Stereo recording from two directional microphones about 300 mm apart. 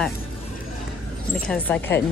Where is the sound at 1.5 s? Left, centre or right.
Centre.